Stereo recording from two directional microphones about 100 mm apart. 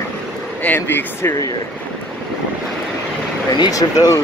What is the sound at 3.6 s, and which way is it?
Speech, 40° left (ahead or behind).